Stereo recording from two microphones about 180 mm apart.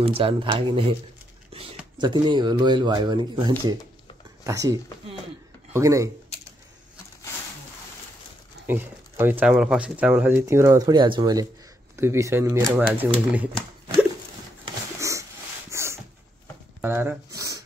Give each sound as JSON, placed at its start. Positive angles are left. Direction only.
{"t": 0.0, "sound": "speech", "side_deg": -30}
{"t": 2.0, "sound": "speech", "side_deg": -25}
{"t": 8.6, "sound": "speech", "side_deg": -10}
{"t": 15.0, "sound": "sniff", "side_deg": -15}
{"t": 15.7, "sound": "a sound", "side_deg": -15}